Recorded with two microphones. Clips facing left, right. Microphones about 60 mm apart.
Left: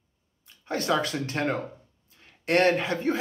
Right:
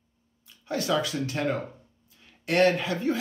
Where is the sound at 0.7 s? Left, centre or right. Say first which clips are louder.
Left 1 dB; left.